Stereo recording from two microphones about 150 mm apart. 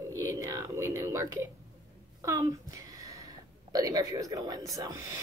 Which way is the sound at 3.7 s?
25° right (ahead or behind).